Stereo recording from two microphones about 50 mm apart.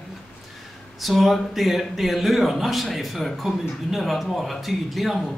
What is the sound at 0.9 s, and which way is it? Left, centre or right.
Speech, centre.